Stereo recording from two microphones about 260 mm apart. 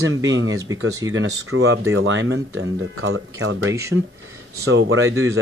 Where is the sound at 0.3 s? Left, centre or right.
Right.